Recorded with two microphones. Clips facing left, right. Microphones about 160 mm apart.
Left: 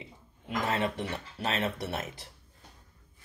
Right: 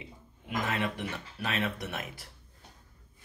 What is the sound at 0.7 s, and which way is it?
Speech, 30° left (ahead or behind).